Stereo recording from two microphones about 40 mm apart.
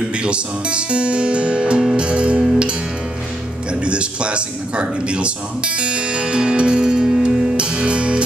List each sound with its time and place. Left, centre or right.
0.2 s speech: right
3.8 s speech: right